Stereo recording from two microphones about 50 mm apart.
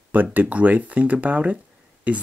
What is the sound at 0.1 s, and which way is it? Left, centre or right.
Speech, right.